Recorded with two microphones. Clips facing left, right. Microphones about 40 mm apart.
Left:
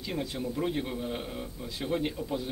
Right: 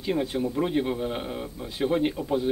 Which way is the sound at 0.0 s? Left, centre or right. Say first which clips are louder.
Right 7 dB; right.